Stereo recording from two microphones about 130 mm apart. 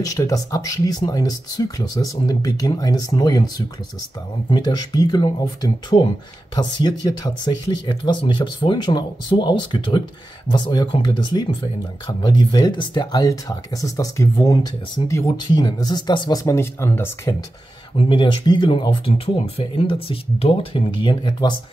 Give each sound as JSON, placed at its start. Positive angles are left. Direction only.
{"t": 0.0, "sound": "speech", "side_deg": 25}
{"t": 17.9, "sound": "speech", "side_deg": 40}